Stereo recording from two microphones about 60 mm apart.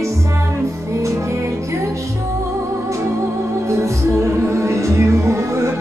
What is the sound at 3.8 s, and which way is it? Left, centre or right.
Music, right.